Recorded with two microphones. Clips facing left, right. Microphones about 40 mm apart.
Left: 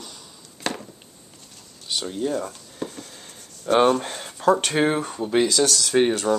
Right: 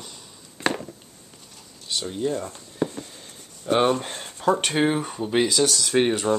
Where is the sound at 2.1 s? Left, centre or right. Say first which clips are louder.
Even; centre.